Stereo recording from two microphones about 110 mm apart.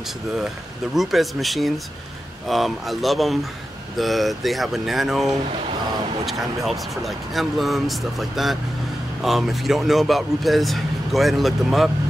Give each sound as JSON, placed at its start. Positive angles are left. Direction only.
{"t": 0.9, "sound": "speech", "side_deg": 0}